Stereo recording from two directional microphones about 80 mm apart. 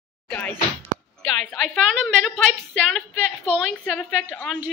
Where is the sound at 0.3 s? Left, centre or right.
Centre.